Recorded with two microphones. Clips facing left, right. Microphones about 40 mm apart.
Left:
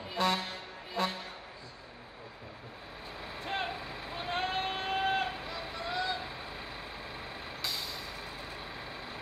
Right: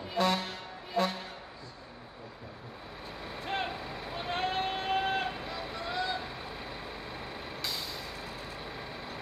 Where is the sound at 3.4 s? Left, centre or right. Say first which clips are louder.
Right 1 dB; centre.